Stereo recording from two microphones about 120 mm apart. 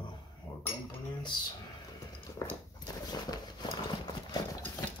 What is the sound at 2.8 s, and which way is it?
Clip-clop, 35° left (ahead or behind).